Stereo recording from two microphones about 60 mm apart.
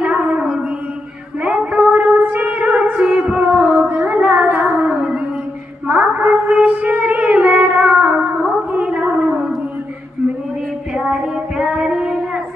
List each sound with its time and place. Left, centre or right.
0.0 s female singing: centre
5.9 s a sound: right
10.9 s child singing: centre